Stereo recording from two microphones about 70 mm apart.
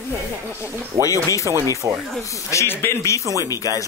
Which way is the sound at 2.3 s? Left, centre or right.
Left.